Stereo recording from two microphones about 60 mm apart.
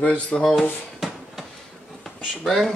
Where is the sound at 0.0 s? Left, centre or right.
Centre.